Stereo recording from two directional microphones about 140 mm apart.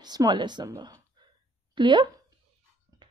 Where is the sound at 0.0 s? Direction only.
30° right (ahead or behind).